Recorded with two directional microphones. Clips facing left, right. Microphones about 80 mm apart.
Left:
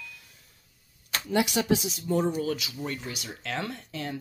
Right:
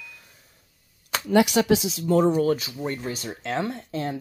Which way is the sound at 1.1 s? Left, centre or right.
Right.